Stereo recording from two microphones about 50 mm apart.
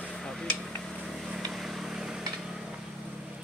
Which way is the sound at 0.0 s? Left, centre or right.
Centre.